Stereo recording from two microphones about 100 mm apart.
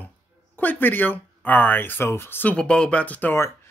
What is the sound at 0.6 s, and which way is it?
Speech, 20° left (ahead or behind).